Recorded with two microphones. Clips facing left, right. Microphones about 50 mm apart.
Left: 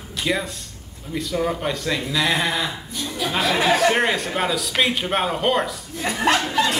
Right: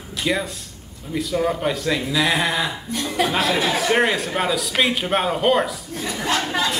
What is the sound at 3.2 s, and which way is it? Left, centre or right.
Speech, right.